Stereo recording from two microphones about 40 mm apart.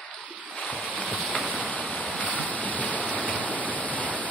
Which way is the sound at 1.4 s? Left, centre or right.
Right.